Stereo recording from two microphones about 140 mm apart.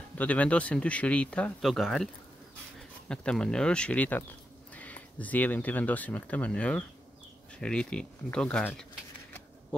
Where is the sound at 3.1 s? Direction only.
5° left (ahead or behind).